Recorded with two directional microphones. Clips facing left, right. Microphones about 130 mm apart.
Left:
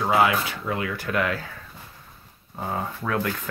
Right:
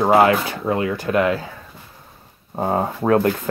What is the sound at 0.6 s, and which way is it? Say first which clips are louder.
Speech: right 7 dB; 30° right (ahead or behind).